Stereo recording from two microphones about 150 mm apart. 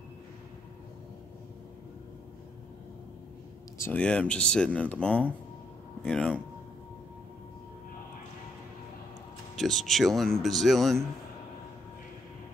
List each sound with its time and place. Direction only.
3.7 s speech: 15° left (ahead or behind)
4.0 s speech: 5° left (ahead or behind)
9.6 s speech: centre (ahead or behind)